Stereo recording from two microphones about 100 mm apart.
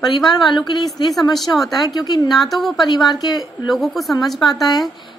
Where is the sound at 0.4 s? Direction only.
50° left (ahead or behind).